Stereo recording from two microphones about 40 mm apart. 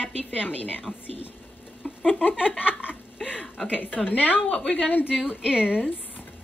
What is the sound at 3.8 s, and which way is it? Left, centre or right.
Speech, left.